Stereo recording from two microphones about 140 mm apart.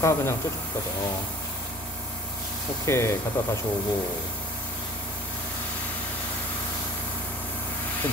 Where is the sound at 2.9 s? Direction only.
20° left (ahead or behind).